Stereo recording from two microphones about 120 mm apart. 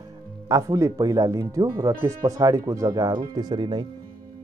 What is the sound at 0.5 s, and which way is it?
Speech, 25° right (ahead or behind).